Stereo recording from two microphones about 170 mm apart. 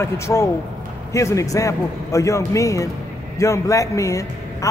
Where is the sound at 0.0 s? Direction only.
15° left (ahead or behind).